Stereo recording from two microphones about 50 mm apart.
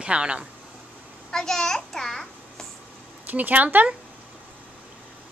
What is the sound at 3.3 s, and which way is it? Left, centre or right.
Speech, right.